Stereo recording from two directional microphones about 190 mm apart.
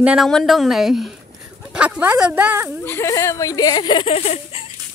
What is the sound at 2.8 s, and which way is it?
Speech, 15° left (ahead or behind).